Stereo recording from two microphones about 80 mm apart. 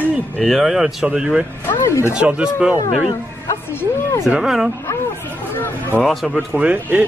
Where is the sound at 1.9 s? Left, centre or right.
Left.